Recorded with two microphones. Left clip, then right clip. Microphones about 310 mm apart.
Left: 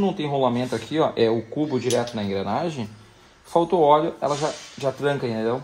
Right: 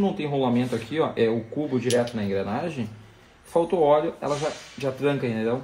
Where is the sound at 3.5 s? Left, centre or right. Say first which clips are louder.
Left 3 dB; left.